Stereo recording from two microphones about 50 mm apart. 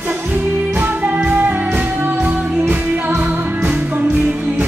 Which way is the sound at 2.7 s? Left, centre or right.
Right.